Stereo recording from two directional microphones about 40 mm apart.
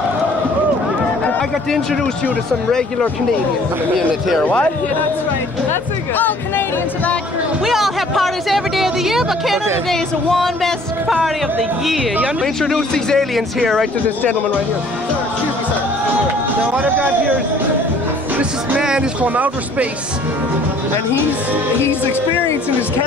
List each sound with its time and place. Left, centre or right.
6.1 s speech: left
7.6 s speech: centre
9.8 s speech: centre
11.8 s speech: centre
12.6 s speech: centre
18.8 s speech: centre
19.2 s speech: right